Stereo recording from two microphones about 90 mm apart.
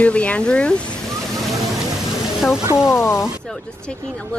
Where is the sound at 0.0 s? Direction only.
15° left (ahead or behind).